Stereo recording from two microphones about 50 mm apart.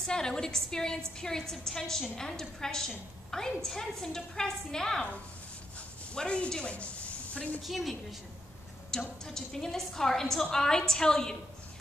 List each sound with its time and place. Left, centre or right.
0.0 s a woman's voice: centre
6.1 s a woman's voice: centre
7.6 s a woman's voice: centre
9.2 s a woman's voice: centre